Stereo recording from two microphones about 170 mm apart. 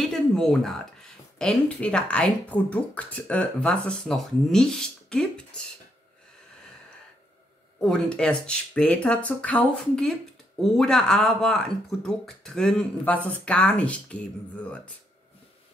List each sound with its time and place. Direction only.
0.1 s a sound: 5° left (ahead or behind)
1.4 s speech: 5° left (ahead or behind)
7.8 s speech: 5° left (ahead or behind)